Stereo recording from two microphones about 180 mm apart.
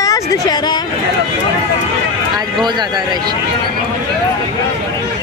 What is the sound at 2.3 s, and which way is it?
Speech, 25° right (ahead or behind).